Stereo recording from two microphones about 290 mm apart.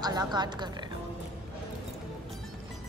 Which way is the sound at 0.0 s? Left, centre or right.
Centre.